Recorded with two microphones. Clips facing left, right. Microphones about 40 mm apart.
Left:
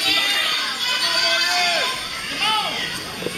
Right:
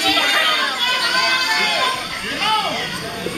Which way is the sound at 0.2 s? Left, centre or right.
Right.